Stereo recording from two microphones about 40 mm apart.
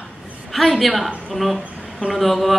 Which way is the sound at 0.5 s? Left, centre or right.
Centre.